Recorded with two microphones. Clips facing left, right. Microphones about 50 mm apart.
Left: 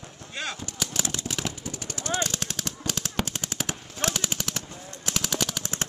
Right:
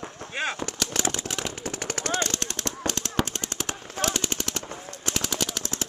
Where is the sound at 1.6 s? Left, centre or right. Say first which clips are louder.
Right 5 dB; right.